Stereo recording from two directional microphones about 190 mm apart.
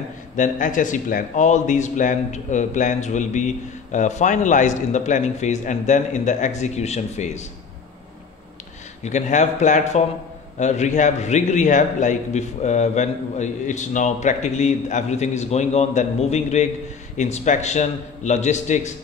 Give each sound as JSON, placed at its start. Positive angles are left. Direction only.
{"t": 0.4, "sound": "a man's voice", "side_deg": 45}
{"t": 9.0, "sound": "a man's voice", "side_deg": 40}